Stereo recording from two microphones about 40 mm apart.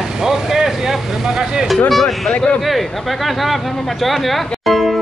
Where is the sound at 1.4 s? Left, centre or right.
Centre.